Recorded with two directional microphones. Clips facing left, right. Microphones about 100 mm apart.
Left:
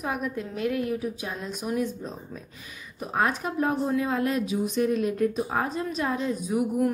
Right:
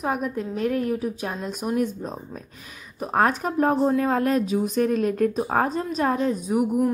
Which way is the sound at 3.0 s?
45° right (ahead or behind).